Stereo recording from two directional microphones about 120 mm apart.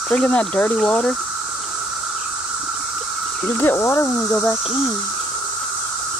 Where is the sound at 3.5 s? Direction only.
20° left (ahead or behind).